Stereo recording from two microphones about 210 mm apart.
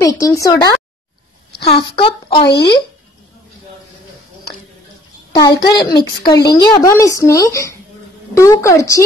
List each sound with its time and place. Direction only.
0.0 s speech: 15° left (ahead or behind)
1.5 s a sound: 50° left (ahead or behind)
1.8 s speech: 25° left (ahead or behind)
2.4 s speech: 55° left (ahead or behind)
5.4 s speech: 20° left (ahead or behind)
6.2 s speech: 50° left (ahead or behind)
6.5 s speech: 20° left (ahead or behind)